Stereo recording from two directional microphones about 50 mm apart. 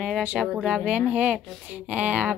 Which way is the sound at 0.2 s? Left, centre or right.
Right.